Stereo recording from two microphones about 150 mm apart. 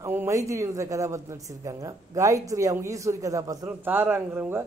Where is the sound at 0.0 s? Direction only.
15° right (ahead or behind).